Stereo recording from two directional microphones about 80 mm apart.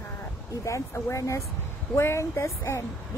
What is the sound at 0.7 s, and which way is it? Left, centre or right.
Speech, left.